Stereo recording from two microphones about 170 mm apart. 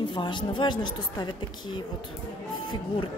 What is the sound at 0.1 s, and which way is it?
A woman's voice, 30° left (ahead or behind).